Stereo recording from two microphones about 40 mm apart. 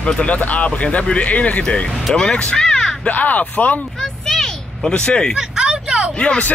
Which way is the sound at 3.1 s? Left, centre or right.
Left.